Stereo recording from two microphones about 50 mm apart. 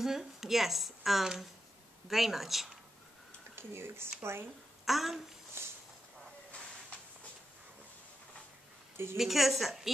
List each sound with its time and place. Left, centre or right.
0.0 s a woman's voice: centre
3.5 s speech: right
4.8 s speech: centre
5.6 s a sound: right
9.1 s a woman's voice: centre